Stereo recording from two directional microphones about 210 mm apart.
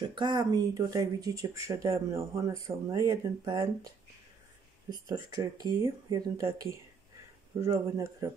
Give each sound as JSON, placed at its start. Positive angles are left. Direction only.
{"t": 0.1, "sound": "speech", "side_deg": -20}